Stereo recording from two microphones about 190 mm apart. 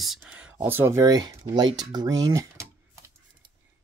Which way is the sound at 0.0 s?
5° right (ahead or behind).